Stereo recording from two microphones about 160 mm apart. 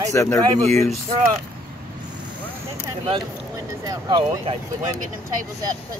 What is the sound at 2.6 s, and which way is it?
Speech, 25° right (ahead or behind).